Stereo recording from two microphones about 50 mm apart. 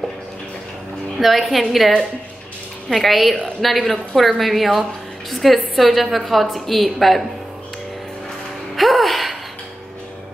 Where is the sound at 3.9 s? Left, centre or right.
Centre.